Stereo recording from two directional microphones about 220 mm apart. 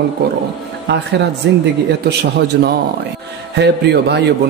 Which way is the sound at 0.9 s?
55° right (ahead or behind).